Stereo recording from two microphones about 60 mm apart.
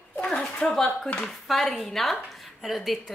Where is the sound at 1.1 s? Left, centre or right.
Centre.